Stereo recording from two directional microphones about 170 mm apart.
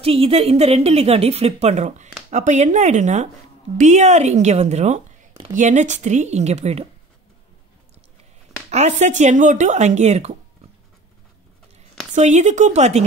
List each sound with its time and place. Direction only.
0.0 s speech: 35° right (ahead or behind)
8.6 s speech: 40° right (ahead or behind)
12.2 s speech: 45° right (ahead or behind)